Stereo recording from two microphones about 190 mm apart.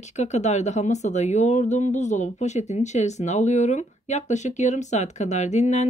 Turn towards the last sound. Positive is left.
turn(degrees=35)  # may be behind; listen again after turning